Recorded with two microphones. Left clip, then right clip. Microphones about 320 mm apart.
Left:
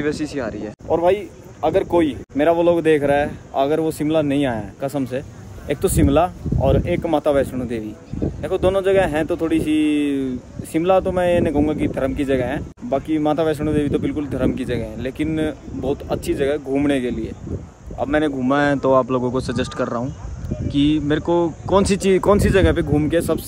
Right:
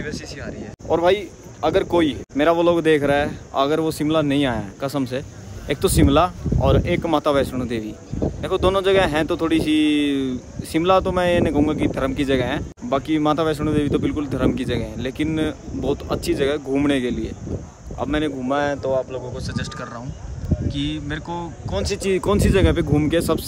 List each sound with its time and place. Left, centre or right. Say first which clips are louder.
0.0 s speech: left 8 dB; centre
0.8 s speech: even; centre
18.4 s speech: left 3 dB; left
19.0 s speech: left 9 dB; centre